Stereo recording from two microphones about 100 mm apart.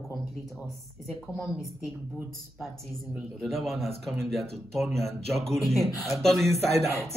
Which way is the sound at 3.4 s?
Centre (ahead or behind).